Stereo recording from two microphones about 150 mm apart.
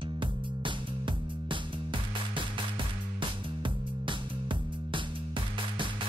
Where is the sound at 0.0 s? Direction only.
35° right (ahead or behind).